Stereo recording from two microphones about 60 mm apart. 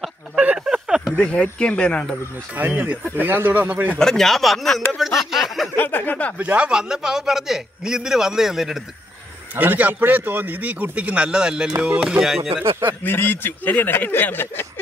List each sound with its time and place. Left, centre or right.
0.4 s a sound: centre
1.2 s speech: centre
2.5 s a man's voice: right
4.0 s speech: centre
5.8 s speech: left
6.3 s a man's voice: right
6.7 s a man's voice: centre
9.6 s a man's voice: right; by 12.6 s centre
13.0 s speech: left